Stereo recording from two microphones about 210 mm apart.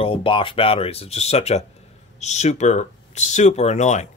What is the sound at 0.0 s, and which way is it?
Speech, 25° left (ahead or behind).